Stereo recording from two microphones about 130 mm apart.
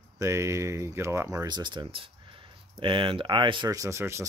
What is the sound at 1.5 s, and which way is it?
Speech, 35° right (ahead or behind).